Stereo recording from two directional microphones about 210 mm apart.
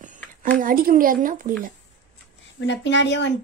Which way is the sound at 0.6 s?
45° right (ahead or behind).